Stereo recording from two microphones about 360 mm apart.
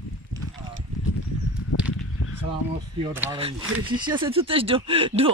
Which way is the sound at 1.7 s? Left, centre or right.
Left.